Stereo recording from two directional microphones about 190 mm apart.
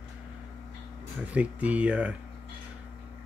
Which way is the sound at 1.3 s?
5° right (ahead or behind).